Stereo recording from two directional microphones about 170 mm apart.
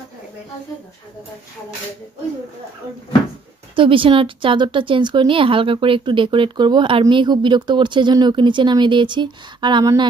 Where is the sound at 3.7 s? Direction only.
30° right (ahead or behind).